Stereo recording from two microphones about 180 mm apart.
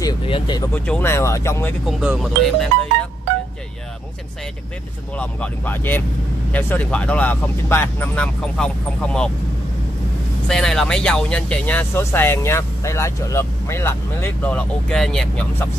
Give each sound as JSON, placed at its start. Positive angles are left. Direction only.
{"t": 0.0, "sound": "speech", "side_deg": 20}
{"t": 0.7, "sound": "speech", "side_deg": 10}
{"t": 1.9, "sound": "speech", "side_deg": -5}
{"t": 5.1, "sound": "speech", "side_deg": 5}
{"t": 10.5, "sound": "speech", "side_deg": 5}